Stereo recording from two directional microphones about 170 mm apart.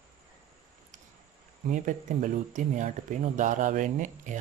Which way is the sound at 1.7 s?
50° right (ahead or behind).